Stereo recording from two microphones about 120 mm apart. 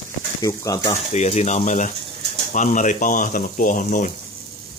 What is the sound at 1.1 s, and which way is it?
Speech, 70° left (ahead or behind).